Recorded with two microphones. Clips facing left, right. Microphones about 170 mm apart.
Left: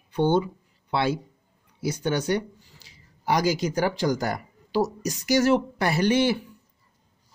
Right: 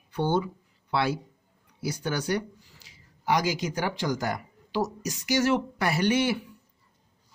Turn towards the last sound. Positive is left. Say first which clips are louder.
# left 3 dB
turn(degrees=30)  # may be behind; listen again after turning